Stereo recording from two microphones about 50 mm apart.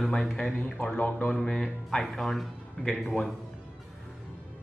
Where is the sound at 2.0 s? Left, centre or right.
Centre.